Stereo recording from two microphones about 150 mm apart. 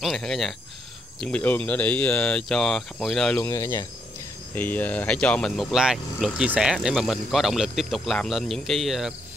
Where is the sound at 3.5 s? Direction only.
20° left (ahead or behind); by 9.2 s centre (ahead or behind).